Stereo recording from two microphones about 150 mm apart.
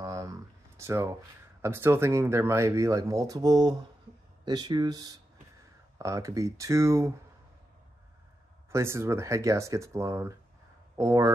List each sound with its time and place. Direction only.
0.0 s a sound: 20° right (ahead or behind)
1.6 s speech: 15° right (ahead or behind)
8.6 s speech: 15° right (ahead or behind)